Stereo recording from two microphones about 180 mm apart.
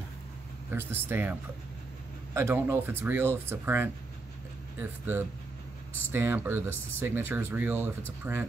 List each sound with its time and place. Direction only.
0.7 s speech: 10° right (ahead or behind)
2.3 s speech: 10° right (ahead or behind)